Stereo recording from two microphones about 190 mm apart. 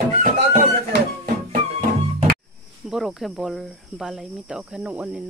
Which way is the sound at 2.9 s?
Centre (ahead or behind).